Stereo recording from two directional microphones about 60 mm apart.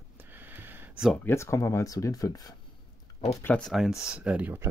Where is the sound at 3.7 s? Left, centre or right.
Centre.